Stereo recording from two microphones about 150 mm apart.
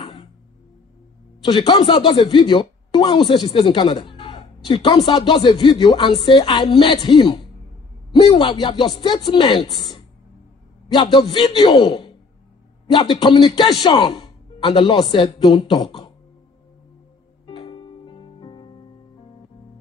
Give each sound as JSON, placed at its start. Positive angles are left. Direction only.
{"t": 0.0, "sound": "music", "side_deg": 30}
{"t": 1.4, "sound": "a woman's voice", "side_deg": 35}
{"t": 14.7, "sound": "a woman's voice", "side_deg": 40}
{"t": 17.5, "sound": "music", "side_deg": 35}